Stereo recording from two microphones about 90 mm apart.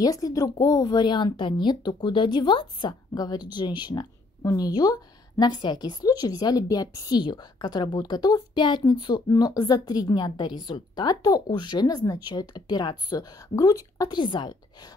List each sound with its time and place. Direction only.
0.0 s a woman's voice: 40° left (ahead or behind); by 9.2 s 55° left (ahead or behind)
9.3 s a woman's voice: 45° left (ahead or behind)
11.5 s a woman's voice: 55° left (ahead or behind); by 14.1 s 40° left (ahead or behind)
14.1 s speech: 60° left (ahead or behind)